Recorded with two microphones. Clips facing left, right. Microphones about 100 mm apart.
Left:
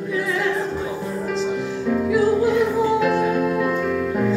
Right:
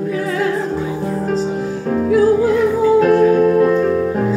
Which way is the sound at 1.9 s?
40° right (ahead or behind).